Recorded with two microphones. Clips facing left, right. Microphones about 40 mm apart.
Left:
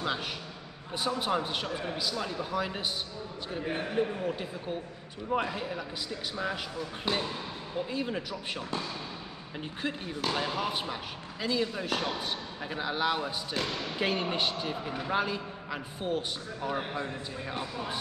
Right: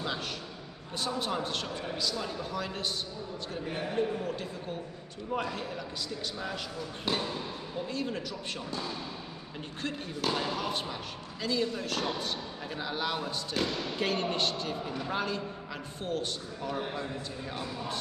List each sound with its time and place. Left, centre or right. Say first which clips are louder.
0.9 s speech: left 3 dB; centre
3.9 s speech: even; centre
9.8 s a man's voice: left 1 dB; centre